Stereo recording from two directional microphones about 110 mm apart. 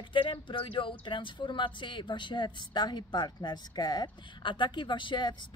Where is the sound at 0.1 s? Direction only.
50° left (ahead or behind).